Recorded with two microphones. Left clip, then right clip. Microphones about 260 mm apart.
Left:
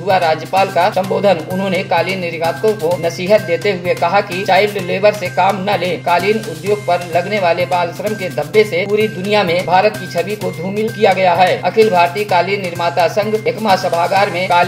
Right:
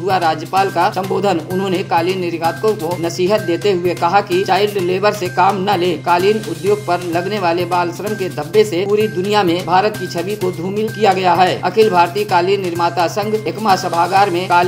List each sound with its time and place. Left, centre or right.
0.1 s speech: right